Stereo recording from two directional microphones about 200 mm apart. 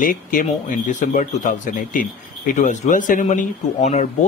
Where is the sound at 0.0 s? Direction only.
40° left (ahead or behind).